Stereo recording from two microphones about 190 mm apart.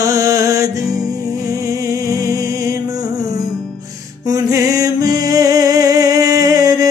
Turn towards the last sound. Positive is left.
turn(degrees=-20)  # may be behind; listen again after turning